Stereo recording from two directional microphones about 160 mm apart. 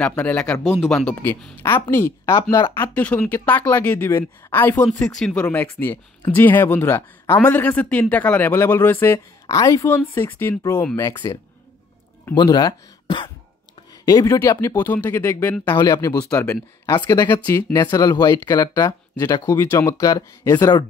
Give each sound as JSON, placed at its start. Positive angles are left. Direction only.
{"t": 0.0, "sound": "speech", "side_deg": 5}
{"t": 12.4, "sound": "speech", "side_deg": 25}